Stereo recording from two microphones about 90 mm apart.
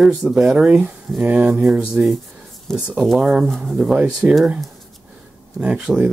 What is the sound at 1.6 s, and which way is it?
Speech, 5° right (ahead or behind).